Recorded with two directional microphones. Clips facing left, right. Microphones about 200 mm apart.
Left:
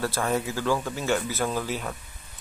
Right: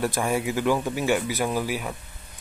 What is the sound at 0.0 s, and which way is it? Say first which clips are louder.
Speech: right 2 dB; 15° right (ahead or behind).